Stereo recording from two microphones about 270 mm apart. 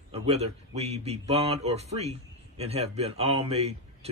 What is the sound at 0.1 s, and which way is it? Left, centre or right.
Speech, right.